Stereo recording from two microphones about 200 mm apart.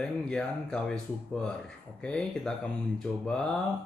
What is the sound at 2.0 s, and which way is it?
Speech, 5° left (ahead or behind).